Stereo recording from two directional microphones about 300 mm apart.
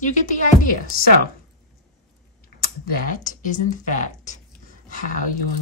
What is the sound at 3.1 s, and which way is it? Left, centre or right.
A woman's voice, left.